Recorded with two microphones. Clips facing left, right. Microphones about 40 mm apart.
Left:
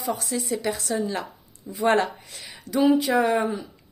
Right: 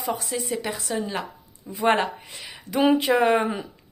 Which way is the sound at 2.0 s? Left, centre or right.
Centre.